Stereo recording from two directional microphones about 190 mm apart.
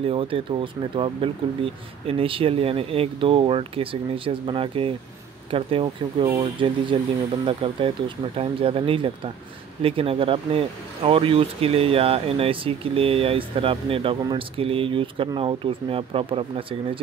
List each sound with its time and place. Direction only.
0.0 s speech: 30° right (ahead or behind)